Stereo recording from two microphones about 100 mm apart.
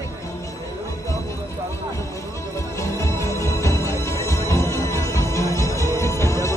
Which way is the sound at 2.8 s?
30° left (ahead or behind).